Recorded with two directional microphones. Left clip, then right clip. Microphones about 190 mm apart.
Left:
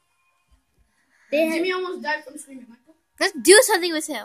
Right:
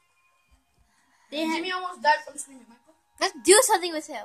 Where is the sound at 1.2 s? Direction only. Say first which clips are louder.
Left 7 dB; 40° right (ahead or behind).